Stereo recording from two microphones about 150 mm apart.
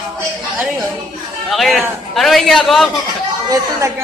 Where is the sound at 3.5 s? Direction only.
20° right (ahead or behind).